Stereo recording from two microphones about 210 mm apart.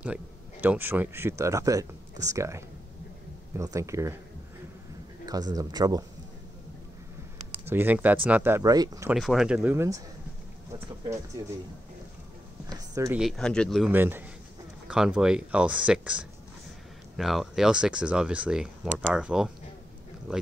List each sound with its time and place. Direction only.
0.0 s speech: 5° right (ahead or behind)
5.2 s speech: 20° right (ahead or behind)
7.6 s speech: 10° right (ahead or behind)
9.1 s speech: centre (ahead or behind)
9.6 s speech: 15° right (ahead or behind)
12.6 s speech: 15° right (ahead or behind)
13.2 s speech: 5° left (ahead or behind)
13.9 s speech: 10° right (ahead or behind)